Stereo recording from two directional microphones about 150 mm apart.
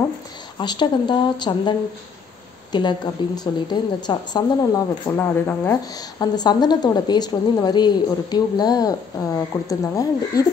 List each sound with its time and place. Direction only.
0.6 s a woman's voice: 30° left (ahead or behind)
5.1 s speech: 15° left (ahead or behind)
5.9 s a woman's voice: 25° left (ahead or behind)